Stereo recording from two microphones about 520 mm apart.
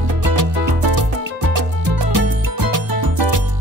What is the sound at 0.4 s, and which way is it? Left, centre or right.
Music, right.